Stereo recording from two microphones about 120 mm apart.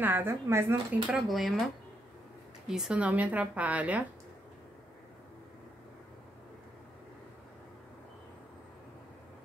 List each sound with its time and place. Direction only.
0.0 s speech: 20° right (ahead or behind)
1.1 s speech: centre (ahead or behind)
2.7 s a woman's voice: 5° right (ahead or behind)